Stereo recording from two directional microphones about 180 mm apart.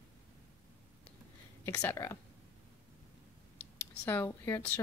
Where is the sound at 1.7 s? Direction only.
15° left (ahead or behind).